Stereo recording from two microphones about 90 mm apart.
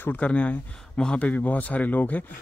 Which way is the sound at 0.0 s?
15° left (ahead or behind).